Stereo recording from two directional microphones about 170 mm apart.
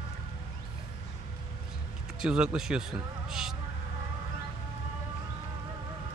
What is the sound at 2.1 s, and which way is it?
Speech, 5° right (ahead or behind).